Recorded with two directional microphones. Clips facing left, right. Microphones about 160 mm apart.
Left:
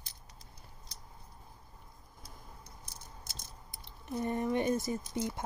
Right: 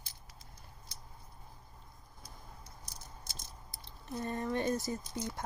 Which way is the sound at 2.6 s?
25° left (ahead or behind).